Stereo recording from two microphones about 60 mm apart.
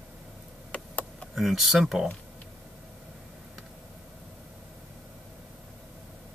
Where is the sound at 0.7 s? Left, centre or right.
Left.